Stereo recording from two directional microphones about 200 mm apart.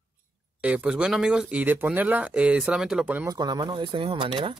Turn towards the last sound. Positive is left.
turn(degrees=-25)  # may be behind; listen again after turning